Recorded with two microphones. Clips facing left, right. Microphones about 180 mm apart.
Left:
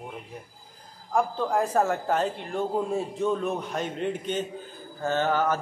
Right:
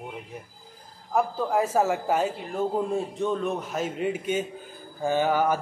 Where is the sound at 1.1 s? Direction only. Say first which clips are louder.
Right 1 dB; 5° right (ahead or behind).